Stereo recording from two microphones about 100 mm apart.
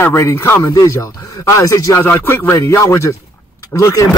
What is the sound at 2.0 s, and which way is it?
Music, 20° left (ahead or behind).